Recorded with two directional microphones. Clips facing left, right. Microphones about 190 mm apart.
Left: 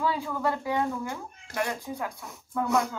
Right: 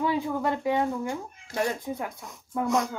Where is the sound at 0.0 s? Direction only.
20° right (ahead or behind).